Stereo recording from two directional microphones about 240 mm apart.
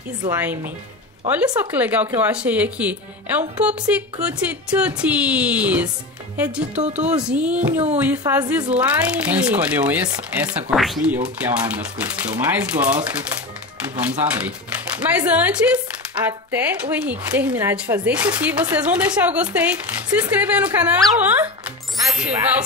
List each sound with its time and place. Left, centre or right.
0.2 s speech: centre
6.8 s speech: right
7.2 s speech: centre